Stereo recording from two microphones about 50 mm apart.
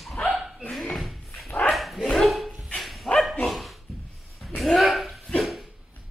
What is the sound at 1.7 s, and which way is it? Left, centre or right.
Bow-wow, centre.